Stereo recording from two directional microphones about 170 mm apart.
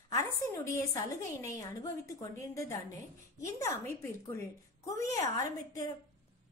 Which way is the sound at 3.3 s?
15° left (ahead or behind).